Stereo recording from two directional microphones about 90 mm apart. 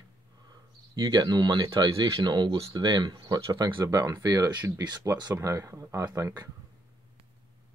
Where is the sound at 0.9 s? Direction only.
50° right (ahead or behind).